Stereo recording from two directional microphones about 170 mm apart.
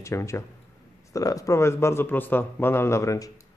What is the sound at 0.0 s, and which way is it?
A man's voice, 15° left (ahead or behind).